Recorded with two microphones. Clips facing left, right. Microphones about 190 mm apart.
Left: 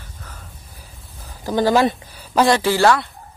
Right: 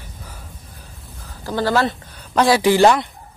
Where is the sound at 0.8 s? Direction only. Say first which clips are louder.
Right 2 dB; 15° left (ahead or behind).